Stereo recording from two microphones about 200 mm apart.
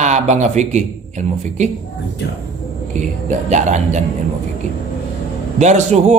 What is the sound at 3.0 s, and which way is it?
Speech, 35° right (ahead or behind).